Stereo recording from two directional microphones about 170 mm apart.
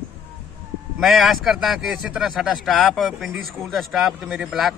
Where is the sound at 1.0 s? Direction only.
Centre (ahead or behind).